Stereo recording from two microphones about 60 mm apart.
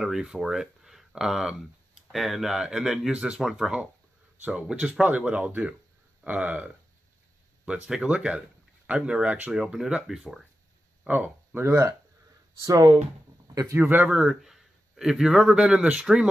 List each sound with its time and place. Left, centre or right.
0.0 s speech: centre
9.5 s speech: centre
11.1 s speech: right
12.6 s speech: right
13.7 s speech: right
14.1 s a man's voice: centre